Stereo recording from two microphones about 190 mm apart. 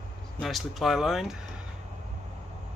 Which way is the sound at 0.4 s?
Centre (ahead or behind).